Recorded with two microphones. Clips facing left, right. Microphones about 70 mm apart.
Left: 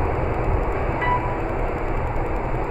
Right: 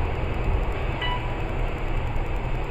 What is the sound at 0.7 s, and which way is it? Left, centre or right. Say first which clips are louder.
Wind chime: left 7 dB; left.